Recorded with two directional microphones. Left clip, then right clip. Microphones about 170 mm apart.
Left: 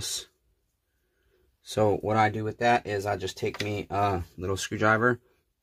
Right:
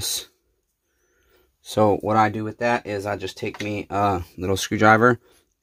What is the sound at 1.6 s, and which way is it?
Speech, 25° right (ahead or behind).